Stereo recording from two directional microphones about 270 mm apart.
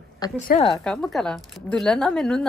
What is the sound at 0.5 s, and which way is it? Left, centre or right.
Speech, left.